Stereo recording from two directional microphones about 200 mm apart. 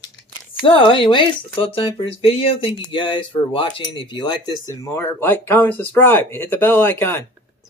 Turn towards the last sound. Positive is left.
turn(degrees=10)  # may be behind; listen again after turning